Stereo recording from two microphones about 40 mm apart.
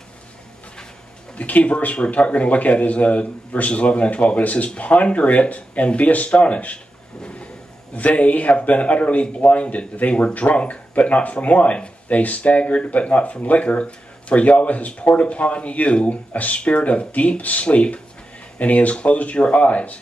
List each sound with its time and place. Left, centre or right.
1.4 s speech: left
7.9 s speech: left